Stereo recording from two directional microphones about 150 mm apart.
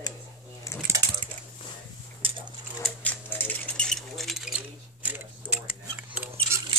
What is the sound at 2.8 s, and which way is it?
Typewriter, 10° left (ahead or behind).